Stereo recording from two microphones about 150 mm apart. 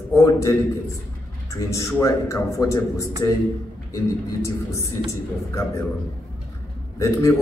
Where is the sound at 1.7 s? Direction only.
20° left (ahead or behind).